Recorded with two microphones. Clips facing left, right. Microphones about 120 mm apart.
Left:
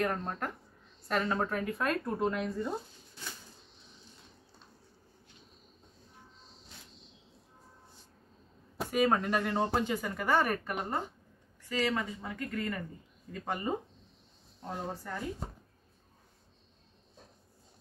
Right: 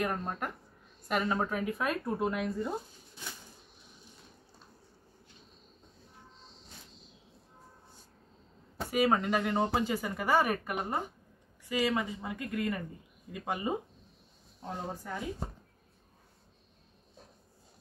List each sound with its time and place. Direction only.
0.0 s speech: 10° right (ahead or behind)
6.4 s music: centre (ahead or behind)
8.8 s a sound: 5° right (ahead or behind)
9.2 s speech: 10° right (ahead or behind)